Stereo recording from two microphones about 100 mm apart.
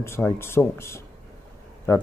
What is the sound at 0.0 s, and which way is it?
Speech, 25° left (ahead or behind).